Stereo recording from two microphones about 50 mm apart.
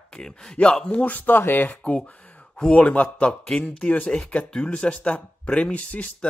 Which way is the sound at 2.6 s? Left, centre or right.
Left.